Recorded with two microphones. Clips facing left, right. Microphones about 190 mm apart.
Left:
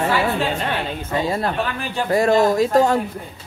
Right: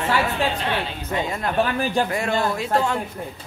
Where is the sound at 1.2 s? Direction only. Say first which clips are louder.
Even; 35° left (ahead or behind).